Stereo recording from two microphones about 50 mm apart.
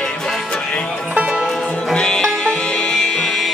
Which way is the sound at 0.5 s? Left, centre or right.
Centre.